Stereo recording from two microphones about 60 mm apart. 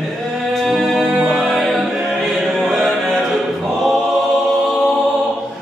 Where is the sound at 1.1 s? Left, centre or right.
Centre.